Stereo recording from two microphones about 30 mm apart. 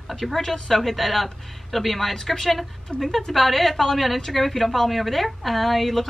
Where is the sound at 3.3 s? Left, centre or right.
Centre.